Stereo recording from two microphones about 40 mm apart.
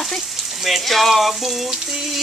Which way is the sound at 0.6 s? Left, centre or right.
Centre.